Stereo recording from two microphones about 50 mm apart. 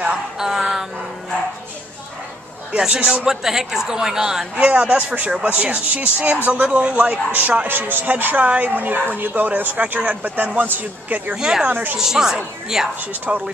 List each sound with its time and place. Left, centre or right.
0.4 s music: centre
2.7 s a man's voice: right
4.9 s a man's voice: right
11.3 s a man's voice: centre
11.6 s a man's voice: right
12.0 s a man's voice: centre
13.3 s speech: right